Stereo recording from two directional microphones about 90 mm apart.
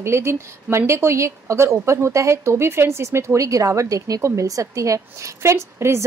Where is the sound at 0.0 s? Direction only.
30° right (ahead or behind).